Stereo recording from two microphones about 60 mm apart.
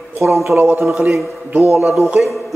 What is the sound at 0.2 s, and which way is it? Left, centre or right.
Speech, right.